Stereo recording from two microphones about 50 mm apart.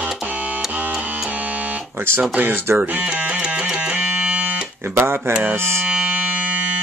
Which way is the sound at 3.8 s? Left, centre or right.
Right.